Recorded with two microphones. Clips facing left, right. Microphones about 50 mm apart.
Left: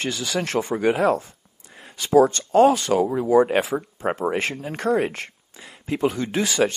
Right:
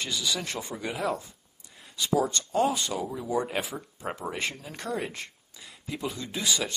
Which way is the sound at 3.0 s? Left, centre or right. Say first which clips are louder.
Left 14 dB; left.